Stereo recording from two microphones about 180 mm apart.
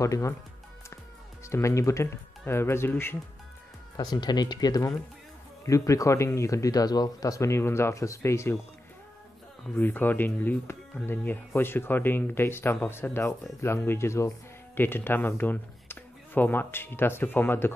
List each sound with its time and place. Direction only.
0.0 s speech: 15° left (ahead or behind)
1.4 s speech: 15° left (ahead or behind)
9.8 s speech: 10° left (ahead or behind)